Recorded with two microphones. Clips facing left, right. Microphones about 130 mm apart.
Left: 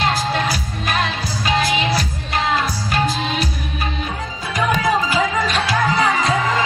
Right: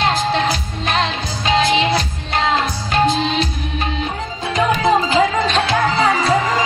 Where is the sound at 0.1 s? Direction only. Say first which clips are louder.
Right 3 dB; 25° right (ahead or behind).